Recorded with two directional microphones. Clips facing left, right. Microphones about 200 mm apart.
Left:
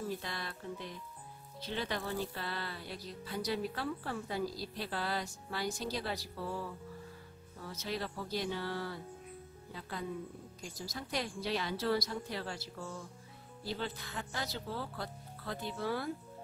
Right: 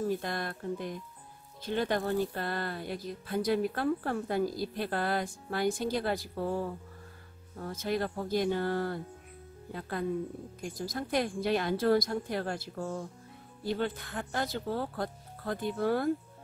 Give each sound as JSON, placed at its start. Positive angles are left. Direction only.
{"t": 0.2, "sound": "speech", "side_deg": -50}